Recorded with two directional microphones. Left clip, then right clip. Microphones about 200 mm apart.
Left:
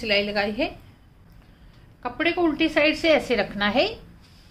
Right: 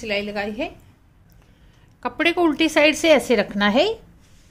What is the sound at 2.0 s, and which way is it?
A woman's voice, 55° right (ahead or behind).